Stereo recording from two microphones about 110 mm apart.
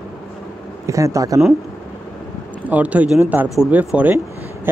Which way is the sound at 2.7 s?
15° right (ahead or behind).